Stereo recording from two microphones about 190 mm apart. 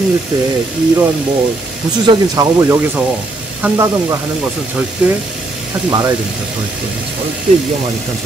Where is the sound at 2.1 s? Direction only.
20° right (ahead or behind).